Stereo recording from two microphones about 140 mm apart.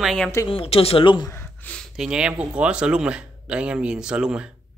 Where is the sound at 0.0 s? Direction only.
5° left (ahead or behind).